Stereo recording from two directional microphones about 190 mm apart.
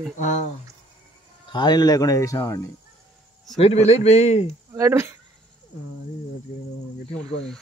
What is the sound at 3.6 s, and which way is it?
Speech, 35° left (ahead or behind).